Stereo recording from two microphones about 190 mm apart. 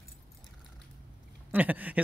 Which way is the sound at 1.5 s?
10° right (ahead or behind).